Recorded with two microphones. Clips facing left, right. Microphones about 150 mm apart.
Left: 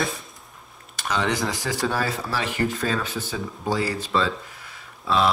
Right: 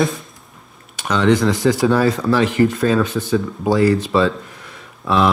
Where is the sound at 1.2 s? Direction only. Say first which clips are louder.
Right 12 dB; centre (ahead or behind).